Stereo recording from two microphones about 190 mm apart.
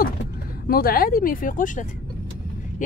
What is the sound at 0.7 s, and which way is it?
Speech, 50° left (ahead or behind).